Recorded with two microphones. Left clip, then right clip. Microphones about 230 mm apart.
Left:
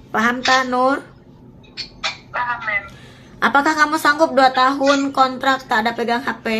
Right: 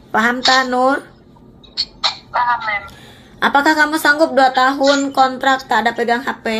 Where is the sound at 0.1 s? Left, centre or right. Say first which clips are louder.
Right 3 dB; centre.